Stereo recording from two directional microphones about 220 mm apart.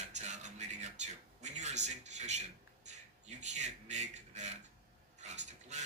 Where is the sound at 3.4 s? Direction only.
30° right (ahead or behind).